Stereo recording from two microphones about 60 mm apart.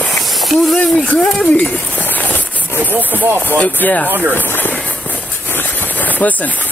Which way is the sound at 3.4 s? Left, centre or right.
Left.